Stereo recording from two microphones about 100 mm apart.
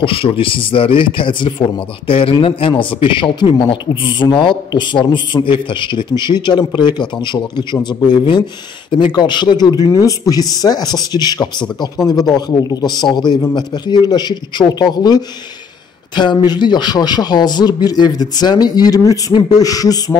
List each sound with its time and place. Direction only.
0.0 s a man's voice: 65° left (ahead or behind); by 20.0 s 35° left (ahead or behind)